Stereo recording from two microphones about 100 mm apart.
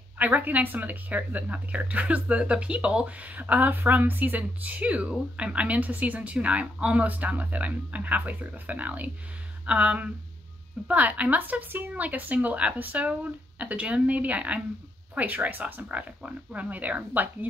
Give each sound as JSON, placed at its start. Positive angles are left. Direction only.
{"t": 0.2, "sound": "a woman's voice", "side_deg": -15}